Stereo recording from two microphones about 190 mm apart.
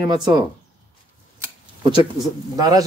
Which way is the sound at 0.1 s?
20° right (ahead or behind).